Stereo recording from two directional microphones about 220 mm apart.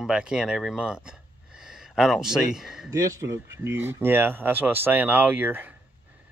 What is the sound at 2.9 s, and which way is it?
Speech, 15° right (ahead or behind).